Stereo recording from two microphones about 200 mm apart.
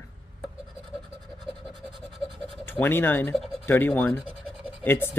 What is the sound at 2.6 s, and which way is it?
Speech, 10° left (ahead or behind).